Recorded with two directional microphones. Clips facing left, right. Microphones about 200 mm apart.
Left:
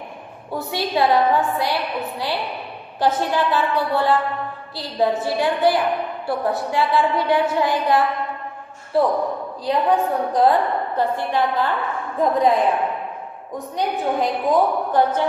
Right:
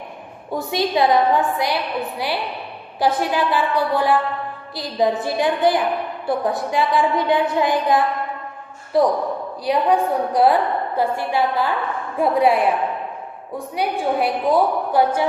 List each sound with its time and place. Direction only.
0.5 s a woman's voice: 15° right (ahead or behind)
13.7 s a woman's voice: 10° right (ahead or behind)